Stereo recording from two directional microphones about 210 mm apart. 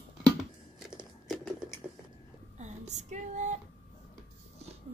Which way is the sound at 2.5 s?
35° right (ahead or behind).